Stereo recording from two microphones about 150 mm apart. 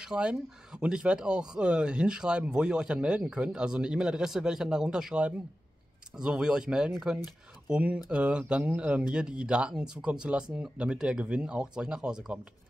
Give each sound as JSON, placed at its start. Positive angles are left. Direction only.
{"t": 0.0, "sound": "speech", "side_deg": -5}